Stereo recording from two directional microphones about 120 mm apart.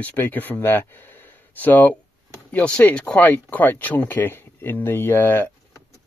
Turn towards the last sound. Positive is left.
turn(degrees=20)  # may be behind; listen again after turning